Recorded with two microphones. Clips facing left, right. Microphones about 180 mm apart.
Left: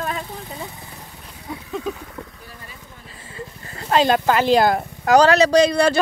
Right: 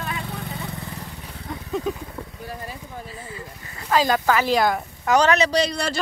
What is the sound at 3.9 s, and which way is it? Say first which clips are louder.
Speech: left 3 dB; 25° left (ahead or behind).